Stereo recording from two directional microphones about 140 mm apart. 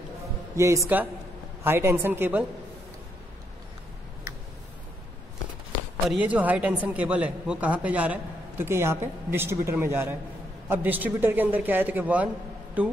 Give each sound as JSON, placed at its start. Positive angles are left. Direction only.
{"t": 0.6, "sound": "speech", "side_deg": -20}
{"t": 6.0, "sound": "speech", "side_deg": -10}